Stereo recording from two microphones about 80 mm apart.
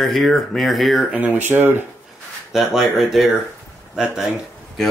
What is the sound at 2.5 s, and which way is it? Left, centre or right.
Speech, centre.